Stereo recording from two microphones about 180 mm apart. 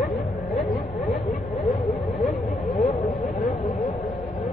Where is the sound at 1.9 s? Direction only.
10° left (ahead or behind).